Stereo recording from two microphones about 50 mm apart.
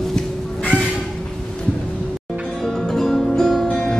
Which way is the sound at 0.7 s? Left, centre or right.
Left.